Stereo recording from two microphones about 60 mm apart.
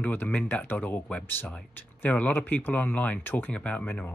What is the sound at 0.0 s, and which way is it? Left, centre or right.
Speech, left.